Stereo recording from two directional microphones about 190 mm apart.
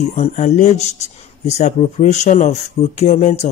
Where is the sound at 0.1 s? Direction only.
35° left (ahead or behind).